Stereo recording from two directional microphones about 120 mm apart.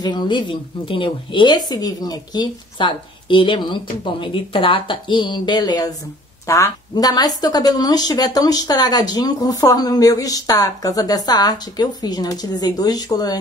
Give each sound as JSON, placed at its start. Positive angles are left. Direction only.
{"t": 0.0, "sound": "speech", "side_deg": 35}